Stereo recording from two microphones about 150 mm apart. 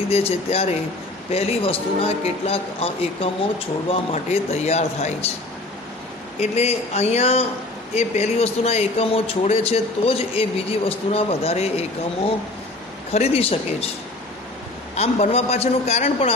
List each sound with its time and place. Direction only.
0.1 s a man's voice: 45° left (ahead or behind)
6.5 s a man's voice: 45° left (ahead or behind)
13.1 s speech: 45° left (ahead or behind)
15.0 s a man's voice: 45° left (ahead or behind)